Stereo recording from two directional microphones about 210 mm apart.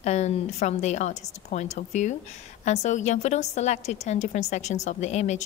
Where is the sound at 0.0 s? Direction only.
35° left (ahead or behind).